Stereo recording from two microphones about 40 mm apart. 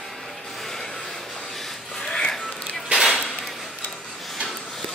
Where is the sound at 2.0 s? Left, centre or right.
Centre.